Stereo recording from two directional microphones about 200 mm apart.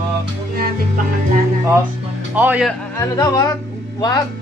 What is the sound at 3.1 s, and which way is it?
Speech, 20° left (ahead or behind).